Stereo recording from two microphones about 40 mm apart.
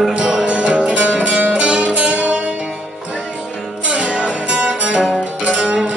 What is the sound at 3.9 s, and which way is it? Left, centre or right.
Music, right.